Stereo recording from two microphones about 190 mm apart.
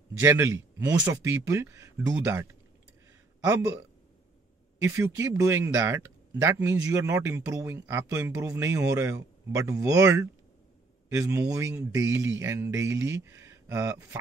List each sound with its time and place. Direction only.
0.2 s speech: 15° right (ahead or behind)
3.4 s speech: 15° right (ahead or behind)
5.2 s speech: 15° right (ahead or behind)